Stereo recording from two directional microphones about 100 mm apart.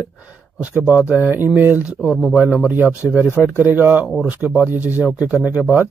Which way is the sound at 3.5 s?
20° right (ahead or behind).